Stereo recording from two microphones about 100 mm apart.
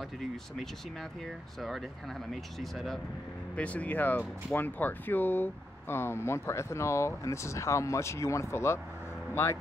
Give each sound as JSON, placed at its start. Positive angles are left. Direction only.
{"t": 1.6, "sound": "speech", "side_deg": 0}
{"t": 3.5, "sound": "speech", "side_deg": 15}